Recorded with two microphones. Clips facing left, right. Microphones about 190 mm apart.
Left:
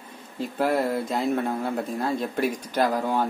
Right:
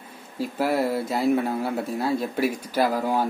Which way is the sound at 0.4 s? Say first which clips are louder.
Even; 5° right (ahead or behind).